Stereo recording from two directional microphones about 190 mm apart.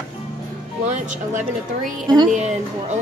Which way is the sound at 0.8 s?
40° right (ahead or behind).